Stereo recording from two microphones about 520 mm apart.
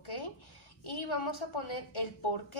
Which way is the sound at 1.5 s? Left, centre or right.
Left.